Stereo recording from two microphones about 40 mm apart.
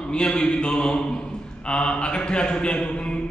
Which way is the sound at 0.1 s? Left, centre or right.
Left.